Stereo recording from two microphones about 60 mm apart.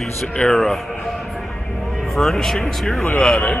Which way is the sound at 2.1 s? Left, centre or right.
Centre.